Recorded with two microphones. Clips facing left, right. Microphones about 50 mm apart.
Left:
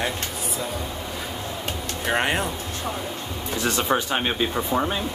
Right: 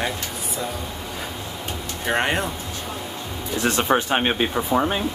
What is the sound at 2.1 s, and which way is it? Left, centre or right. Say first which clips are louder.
Speech: right 1 dB; centre.